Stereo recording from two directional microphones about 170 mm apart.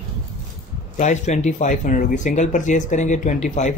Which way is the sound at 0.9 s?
45° left (ahead or behind).